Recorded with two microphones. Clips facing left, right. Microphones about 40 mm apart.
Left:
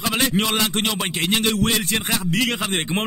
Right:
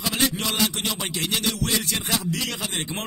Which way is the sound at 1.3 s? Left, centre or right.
Left.